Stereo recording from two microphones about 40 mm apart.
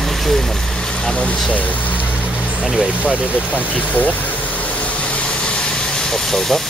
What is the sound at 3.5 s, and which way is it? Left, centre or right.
Speech, left.